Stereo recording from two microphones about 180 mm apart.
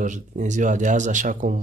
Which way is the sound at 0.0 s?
45° right (ahead or behind).